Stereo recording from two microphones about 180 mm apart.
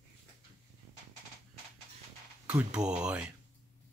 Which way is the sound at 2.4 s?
5° right (ahead or behind).